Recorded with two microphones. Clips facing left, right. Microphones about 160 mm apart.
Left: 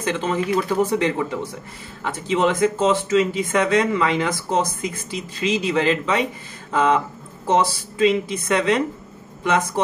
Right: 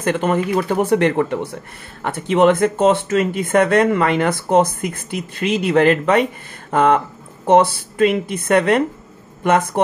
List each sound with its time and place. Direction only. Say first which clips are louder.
0.0 s speech: right 4 dB; 55° right (ahead or behind)